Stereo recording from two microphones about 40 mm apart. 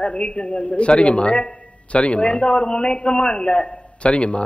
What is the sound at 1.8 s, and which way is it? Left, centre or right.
A man's voice, left.